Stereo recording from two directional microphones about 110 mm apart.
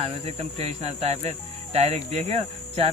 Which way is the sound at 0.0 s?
75° right (ahead or behind).